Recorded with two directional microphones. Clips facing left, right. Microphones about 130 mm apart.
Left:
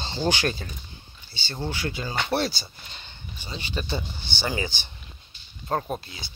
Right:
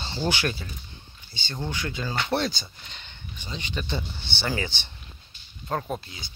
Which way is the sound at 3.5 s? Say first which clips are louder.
Left 1 dB; 20° left (ahead or behind).